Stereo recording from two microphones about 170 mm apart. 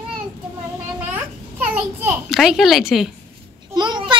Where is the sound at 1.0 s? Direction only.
10° right (ahead or behind).